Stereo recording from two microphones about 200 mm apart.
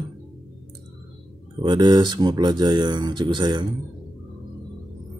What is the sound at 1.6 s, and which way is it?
Speech, 20° right (ahead or behind).